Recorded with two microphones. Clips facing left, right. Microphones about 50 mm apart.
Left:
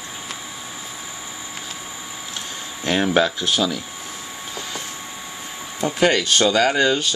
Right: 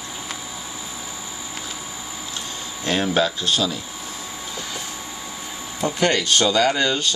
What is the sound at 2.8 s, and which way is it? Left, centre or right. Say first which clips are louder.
Speech: left 2 dB; left.